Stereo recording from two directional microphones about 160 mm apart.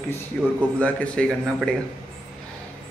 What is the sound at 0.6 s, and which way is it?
Speech, 10° left (ahead or behind).